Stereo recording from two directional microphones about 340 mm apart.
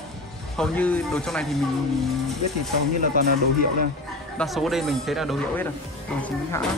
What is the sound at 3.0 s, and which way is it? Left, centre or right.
Speech, right.